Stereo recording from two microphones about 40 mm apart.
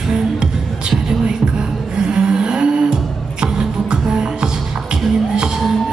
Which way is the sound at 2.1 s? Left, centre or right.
Right.